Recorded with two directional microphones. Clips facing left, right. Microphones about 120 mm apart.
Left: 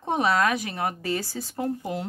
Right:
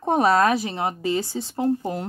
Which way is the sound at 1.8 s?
40° right (ahead or behind).